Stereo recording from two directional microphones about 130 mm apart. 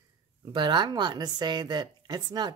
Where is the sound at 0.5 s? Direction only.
35° right (ahead or behind).